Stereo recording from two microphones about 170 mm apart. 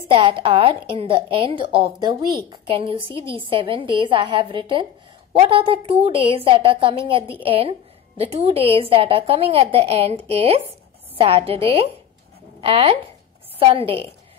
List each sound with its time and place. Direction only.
0.1 s a woman's voice: 30° right (ahead or behind)